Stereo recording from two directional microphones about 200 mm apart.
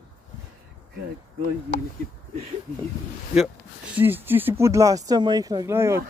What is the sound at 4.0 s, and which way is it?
Speech, 10° right (ahead or behind).